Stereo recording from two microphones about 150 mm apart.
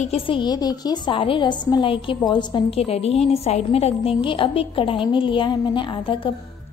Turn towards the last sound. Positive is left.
turn(degrees=35)  # may be behind; listen again after turning